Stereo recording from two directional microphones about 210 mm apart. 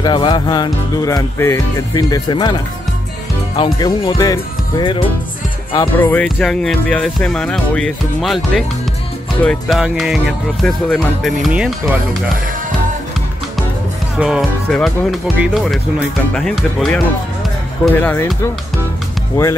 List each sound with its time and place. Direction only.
0.0 s music: 20° left (ahead or behind)
5.9 s speech: 10° left (ahead or behind)
14.2 s speech: centre (ahead or behind)
19.4 s speech: 10° left (ahead or behind)